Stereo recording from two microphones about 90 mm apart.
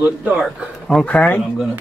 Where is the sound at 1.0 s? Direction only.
15° left (ahead or behind).